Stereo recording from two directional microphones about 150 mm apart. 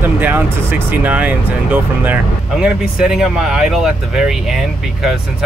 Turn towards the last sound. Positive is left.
turn(degrees=0)  # may be behind; listen again after turning